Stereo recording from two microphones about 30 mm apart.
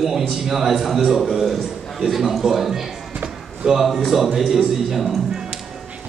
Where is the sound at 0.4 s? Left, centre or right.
Centre.